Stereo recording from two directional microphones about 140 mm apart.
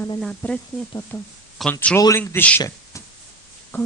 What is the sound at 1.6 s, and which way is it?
Speech, centre (ahead or behind).